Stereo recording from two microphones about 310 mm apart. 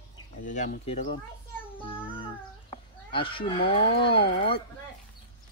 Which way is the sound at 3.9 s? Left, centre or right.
Centre.